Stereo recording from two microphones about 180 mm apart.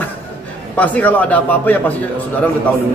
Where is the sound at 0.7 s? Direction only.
10° left (ahead or behind).